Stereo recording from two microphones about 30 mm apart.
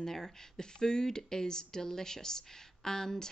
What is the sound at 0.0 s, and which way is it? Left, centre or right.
Speech, centre.